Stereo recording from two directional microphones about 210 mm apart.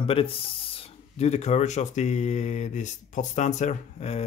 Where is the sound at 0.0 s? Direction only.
25° left (ahead or behind).